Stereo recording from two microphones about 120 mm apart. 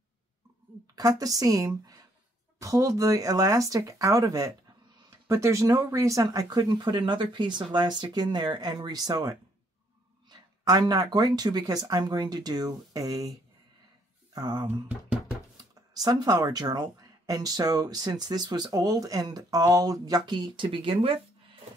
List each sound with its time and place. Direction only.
0.9 s speech: 30° right (ahead or behind); by 21.2 s 50° right (ahead or behind)